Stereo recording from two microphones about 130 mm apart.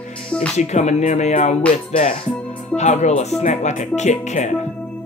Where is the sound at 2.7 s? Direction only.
60° left (ahead or behind).